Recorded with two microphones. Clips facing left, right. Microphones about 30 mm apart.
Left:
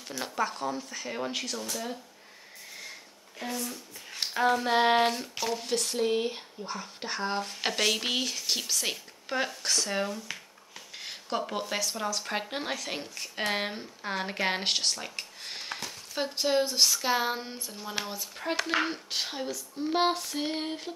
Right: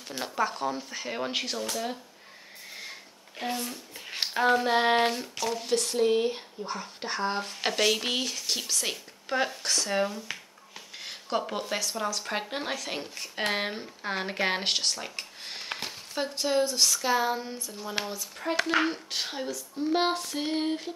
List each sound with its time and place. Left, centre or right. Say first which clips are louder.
0.2 s speech: right 2 dB; centre
2.8 s sniff: right 2 dB; right
3.4 s speech: right 2 dB; right
4.3 s a sound: right 2 dB; centre
4.6 s speech: even; centre
16.2 s speech: even; centre
18.0 s speech: right 2 dB; centre
18.4 s speech: right 3 dB; centre